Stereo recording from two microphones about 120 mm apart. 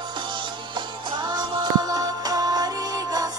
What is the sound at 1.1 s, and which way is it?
Music, 35° right (ahead or behind).